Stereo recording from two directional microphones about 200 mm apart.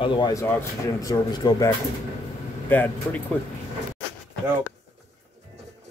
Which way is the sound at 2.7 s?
10° left (ahead or behind).